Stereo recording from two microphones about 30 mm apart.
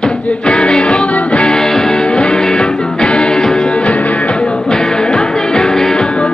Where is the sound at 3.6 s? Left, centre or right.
Left.